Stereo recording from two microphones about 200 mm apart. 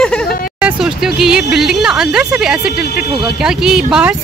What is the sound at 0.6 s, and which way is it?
Speech, 5° right (ahead or behind).